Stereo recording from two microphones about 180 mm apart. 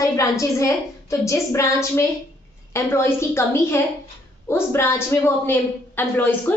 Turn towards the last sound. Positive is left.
turn(degrees=10)  # may be behind; listen again after turning